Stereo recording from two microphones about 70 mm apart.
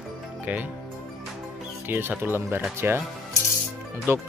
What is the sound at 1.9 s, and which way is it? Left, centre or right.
Speech, right.